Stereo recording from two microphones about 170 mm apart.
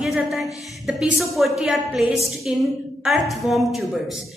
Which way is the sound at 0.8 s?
Centre (ahead or behind).